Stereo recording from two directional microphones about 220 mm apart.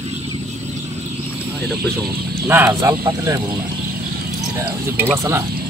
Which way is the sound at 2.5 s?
10° right (ahead or behind).